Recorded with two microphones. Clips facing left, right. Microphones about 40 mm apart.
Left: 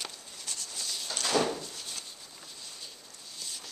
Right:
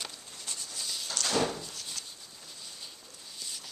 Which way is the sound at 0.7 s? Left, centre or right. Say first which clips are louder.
Even; centre.